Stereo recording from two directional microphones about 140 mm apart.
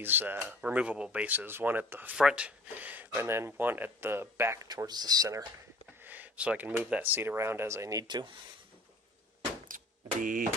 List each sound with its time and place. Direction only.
0.0 s speech: 15° right (ahead or behind)
4.6 s speech: 30° right (ahead or behind)
6.0 s a sound: 10° right (ahead or behind)
6.7 s speech: 15° right (ahead or behind); by 8.4 s 30° right (ahead or behind)
9.7 s a sound: 70° right (ahead or behind)
10.2 s speech: 80° right